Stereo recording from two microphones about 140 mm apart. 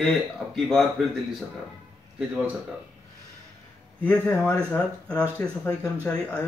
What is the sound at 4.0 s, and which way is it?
Speech, 10° left (ahead or behind).